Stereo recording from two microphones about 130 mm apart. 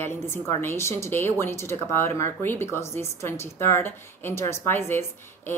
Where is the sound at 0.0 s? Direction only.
20° left (ahead or behind).